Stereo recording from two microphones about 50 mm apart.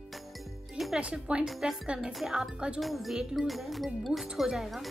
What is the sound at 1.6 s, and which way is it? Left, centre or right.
Speech, centre.